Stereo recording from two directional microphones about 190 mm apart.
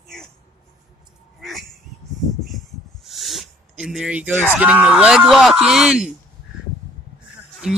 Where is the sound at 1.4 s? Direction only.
Centre (ahead or behind).